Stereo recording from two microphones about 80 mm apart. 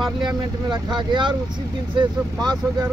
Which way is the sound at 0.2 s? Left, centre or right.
Right.